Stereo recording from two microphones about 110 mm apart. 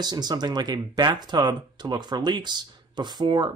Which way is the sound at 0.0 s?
40° right (ahead or behind).